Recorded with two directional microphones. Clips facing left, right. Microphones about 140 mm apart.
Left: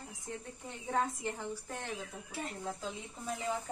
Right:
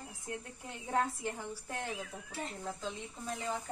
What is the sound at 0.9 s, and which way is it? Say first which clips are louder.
A child's voice: right 1 dB; centre (ahead or behind).